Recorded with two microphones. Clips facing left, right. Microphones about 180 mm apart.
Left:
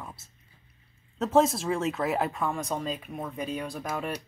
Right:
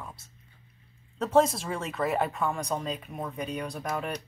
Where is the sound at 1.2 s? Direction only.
Centre (ahead or behind).